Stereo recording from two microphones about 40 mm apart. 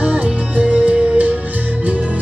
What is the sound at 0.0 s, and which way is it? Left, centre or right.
Music, right.